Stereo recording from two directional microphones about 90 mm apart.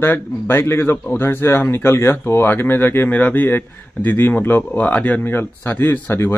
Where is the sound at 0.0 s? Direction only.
25° left (ahead or behind).